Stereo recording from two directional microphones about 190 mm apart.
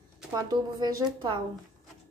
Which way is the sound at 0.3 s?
20° right (ahead or behind).